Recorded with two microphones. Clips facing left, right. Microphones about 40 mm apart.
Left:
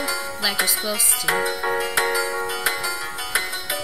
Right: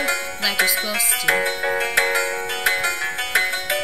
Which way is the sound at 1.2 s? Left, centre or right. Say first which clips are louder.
Right 1 dB; right.